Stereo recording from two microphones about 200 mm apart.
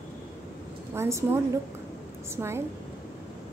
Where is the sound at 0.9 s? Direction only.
15° right (ahead or behind).